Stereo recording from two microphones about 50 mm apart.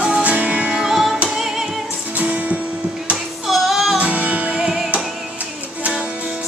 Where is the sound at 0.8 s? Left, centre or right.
Centre.